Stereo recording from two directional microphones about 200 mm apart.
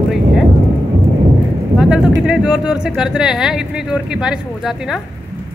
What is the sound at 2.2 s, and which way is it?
Speech, 5° right (ahead or behind).